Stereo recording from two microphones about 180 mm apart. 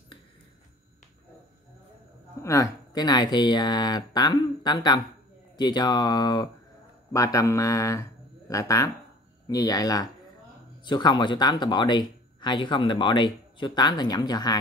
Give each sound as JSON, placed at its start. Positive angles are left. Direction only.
{"t": 2.4, "sound": "speech", "side_deg": 20}